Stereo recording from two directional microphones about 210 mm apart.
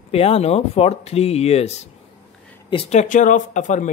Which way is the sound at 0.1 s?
30° left (ahead or behind).